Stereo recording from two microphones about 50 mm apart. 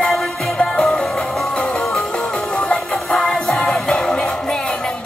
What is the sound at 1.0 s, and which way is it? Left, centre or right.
Music, centre.